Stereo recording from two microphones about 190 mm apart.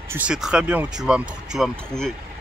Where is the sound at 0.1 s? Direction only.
5° right (ahead or behind).